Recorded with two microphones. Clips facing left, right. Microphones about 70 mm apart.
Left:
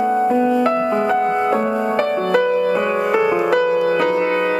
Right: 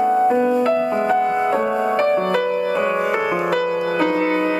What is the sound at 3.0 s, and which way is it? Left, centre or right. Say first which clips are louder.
Music: left 3 dB; centre.